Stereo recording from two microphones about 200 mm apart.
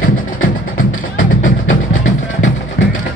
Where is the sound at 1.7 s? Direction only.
80° left.